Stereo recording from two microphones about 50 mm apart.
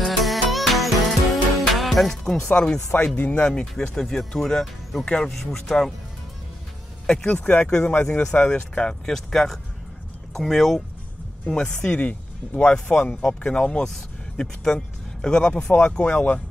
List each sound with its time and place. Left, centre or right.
0.0 s music: centre
2.4 s speech: centre
3.2 s speech: left
3.4 s speech: centre
5.0 s speech: centre
5.3 s speech: centre
7.2 s speech: left
7.6 s speech: left
9.0 s speech: centre
11.4 s speech: centre